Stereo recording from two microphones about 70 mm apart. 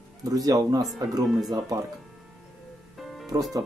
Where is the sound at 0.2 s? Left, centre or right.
Right.